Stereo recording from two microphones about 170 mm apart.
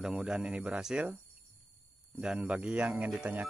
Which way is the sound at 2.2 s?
5° right (ahead or behind).